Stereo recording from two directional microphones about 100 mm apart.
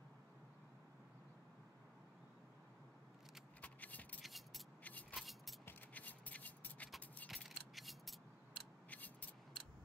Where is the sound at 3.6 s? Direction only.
15° left (ahead or behind).